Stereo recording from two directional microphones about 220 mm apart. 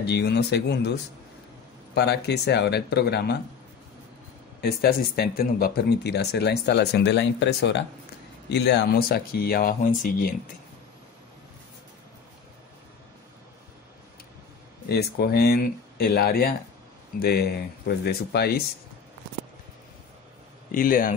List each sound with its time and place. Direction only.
0.0 s speech: 50° left (ahead or behind)
2.0 s speech: 50° left (ahead or behind)
4.6 s speech: 45° left (ahead or behind)
14.9 s speech: 45° left (ahead or behind)
20.7 s speech: 40° left (ahead or behind)